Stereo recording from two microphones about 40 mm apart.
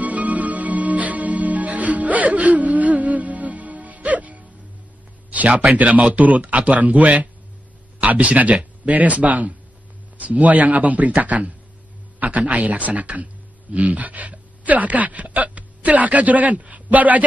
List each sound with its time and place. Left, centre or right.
0.0 s music: right
5.3 s speech: right